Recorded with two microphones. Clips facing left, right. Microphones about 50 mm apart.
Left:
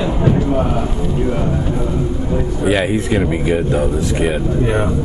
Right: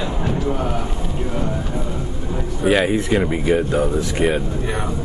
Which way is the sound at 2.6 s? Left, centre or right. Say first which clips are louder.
Even; centre.